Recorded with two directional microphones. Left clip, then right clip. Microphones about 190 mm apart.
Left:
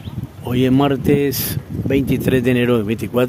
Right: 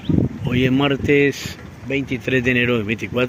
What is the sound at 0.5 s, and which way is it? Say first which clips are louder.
Speech: left 3 dB; 20° left (ahead or behind).